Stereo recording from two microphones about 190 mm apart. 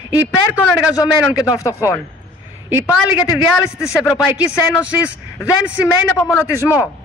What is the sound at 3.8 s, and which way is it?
Speech, 15° left (ahead or behind).